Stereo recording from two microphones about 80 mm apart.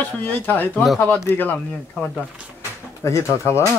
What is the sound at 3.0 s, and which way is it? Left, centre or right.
Speech, left.